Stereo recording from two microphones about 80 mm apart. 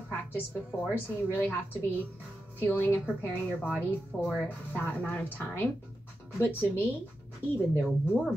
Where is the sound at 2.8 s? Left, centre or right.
Left.